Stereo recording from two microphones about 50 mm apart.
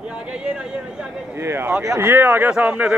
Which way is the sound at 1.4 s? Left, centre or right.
Right.